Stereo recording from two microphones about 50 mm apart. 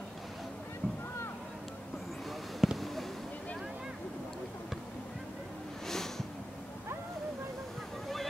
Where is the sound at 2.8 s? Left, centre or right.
Centre.